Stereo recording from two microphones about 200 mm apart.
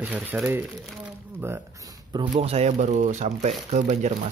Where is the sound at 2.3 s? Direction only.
30° right (ahead or behind).